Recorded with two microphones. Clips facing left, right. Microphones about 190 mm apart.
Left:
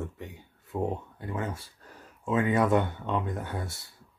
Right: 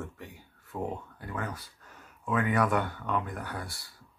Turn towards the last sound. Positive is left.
turn(degrees=20)  # may be behind; listen again after turning